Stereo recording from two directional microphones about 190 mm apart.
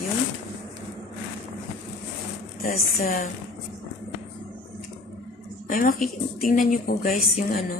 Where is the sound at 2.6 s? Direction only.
50° left (ahead or behind).